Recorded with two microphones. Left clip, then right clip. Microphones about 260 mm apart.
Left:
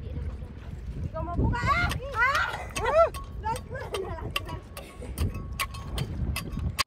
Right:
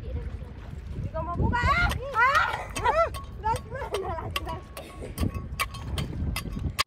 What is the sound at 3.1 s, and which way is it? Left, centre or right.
Tick-tock, right.